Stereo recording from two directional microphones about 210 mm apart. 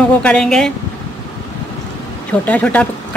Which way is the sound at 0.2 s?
5° left (ahead or behind).